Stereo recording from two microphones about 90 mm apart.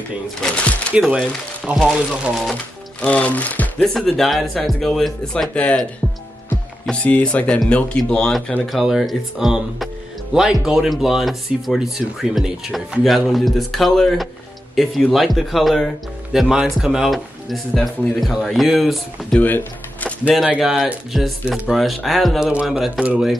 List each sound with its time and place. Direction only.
0.4 s speech: 15° left (ahead or behind)
0.9 s speech: 10° right (ahead or behind)
1.8 s speech: centre (ahead or behind)
2.5 s speech: 15° left (ahead or behind)
3.8 s speech: centre (ahead or behind)
6.9 s speech: 15° left (ahead or behind)
19.4 s music: 20° left (ahead or behind)
20.4 s speech: 10° right (ahead or behind)